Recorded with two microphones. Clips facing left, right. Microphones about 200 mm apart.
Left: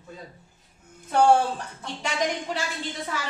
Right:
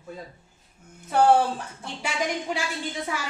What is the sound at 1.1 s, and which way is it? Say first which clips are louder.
Speech: even; 5° right (ahead or behind).